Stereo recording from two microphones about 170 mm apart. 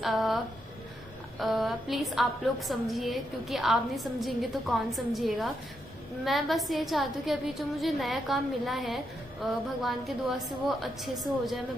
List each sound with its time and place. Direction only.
0.0 s speech: centre (ahead or behind)
1.4 s a woman's voice: centre (ahead or behind)